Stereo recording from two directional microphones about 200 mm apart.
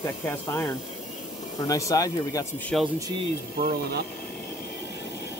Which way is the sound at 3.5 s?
50° right (ahead or behind).